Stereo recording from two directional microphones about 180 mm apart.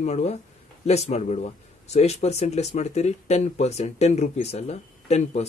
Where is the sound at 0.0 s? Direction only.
40° left (ahead or behind).